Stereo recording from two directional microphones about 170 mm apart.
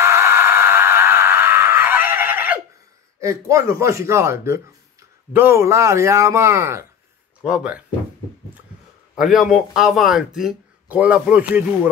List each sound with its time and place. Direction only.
0.0 s a sound: 15° right (ahead or behind)
3.2 s speech: 20° right (ahead or behind)
7.4 s speech: 5° right (ahead or behind)
9.2 s speech: centre (ahead or behind)